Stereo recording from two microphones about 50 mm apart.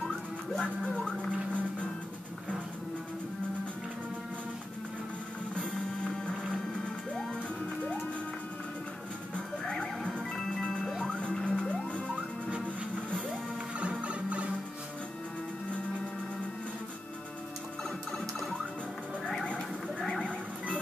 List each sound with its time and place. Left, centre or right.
0.0 s music: centre
1.0 s whale vocalization: centre
5.5 s music: centre
9.3 s music: centre
11.1 s music: left
13.7 s music: right
20.0 s neigh: centre
20.2 s music: left